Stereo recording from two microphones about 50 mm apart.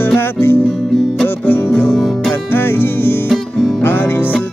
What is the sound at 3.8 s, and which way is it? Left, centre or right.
Music, left.